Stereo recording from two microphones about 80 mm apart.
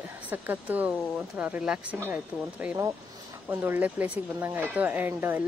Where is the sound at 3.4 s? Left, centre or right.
Right.